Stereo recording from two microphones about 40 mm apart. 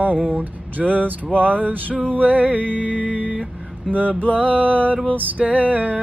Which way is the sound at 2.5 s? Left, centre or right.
Left.